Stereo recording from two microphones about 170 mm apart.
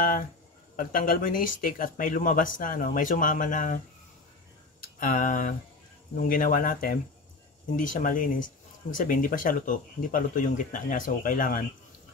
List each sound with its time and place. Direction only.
0.0 s speech: 55° left (ahead or behind)